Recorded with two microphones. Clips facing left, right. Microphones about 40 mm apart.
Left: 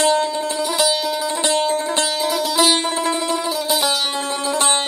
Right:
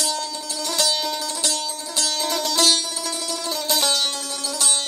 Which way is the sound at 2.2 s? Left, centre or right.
Centre.